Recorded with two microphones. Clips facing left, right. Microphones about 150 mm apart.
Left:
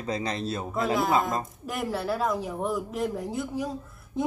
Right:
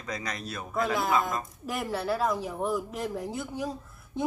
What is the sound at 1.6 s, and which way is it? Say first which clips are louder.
Speech: right 1 dB; centre (ahead or behind).